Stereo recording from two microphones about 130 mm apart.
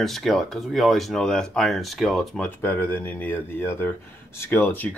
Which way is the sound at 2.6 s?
15° left (ahead or behind).